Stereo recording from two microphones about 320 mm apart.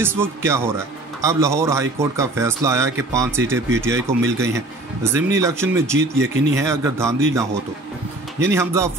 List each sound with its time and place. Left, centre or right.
0.0 s a man's voice: centre